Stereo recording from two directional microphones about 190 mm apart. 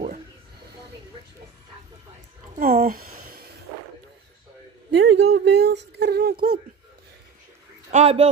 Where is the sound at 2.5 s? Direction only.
50° right (ahead or behind).